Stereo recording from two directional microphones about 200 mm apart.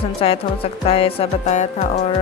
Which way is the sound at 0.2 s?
30° left (ahead or behind).